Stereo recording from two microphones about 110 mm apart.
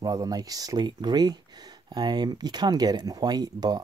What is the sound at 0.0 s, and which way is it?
Speech, 35° right (ahead or behind).